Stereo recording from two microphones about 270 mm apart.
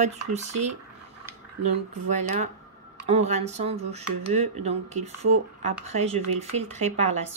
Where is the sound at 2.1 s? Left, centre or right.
Right.